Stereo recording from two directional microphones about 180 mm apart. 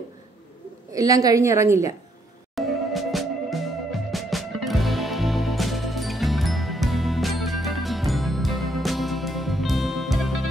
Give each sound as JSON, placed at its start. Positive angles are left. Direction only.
{"t": 0.9, "sound": "a woman's voice", "side_deg": -20}
{"t": 2.5, "sound": "music", "side_deg": 0}